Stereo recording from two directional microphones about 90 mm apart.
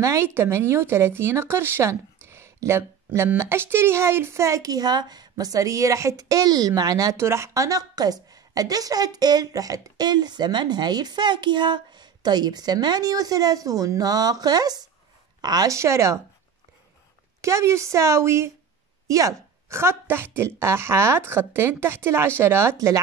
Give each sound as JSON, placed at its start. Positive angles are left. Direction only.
{"t": 0.0, "sound": "speech", "side_deg": -30}
{"t": 17.4, "sound": "a woman's voice", "side_deg": -35}